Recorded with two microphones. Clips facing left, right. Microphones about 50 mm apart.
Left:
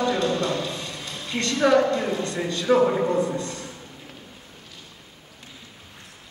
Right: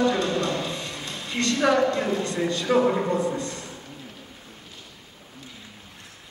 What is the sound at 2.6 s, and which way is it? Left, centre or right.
Speech, centre.